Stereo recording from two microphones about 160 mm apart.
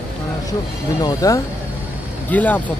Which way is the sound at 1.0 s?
20° left (ahead or behind).